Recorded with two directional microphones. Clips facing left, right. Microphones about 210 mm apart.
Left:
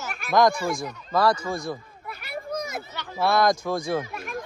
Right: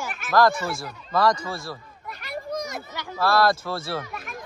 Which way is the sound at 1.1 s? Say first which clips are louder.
Even; 10° left (ahead or behind).